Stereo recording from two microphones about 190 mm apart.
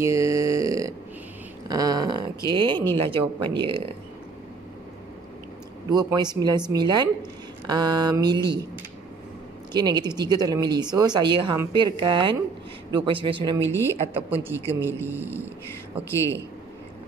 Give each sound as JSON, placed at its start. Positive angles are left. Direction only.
{"t": 0.0, "sound": "a sound", "side_deg": -15}
{"t": 2.5, "sound": "speech", "side_deg": -25}
{"t": 5.9, "sound": "speech", "side_deg": -20}
{"t": 9.7, "sound": "speech", "side_deg": -20}
{"t": 13.6, "sound": "a woman's voice", "side_deg": 15}
{"t": 15.0, "sound": "speech", "side_deg": -10}
{"t": 16.1, "sound": "a woman's voice", "side_deg": 15}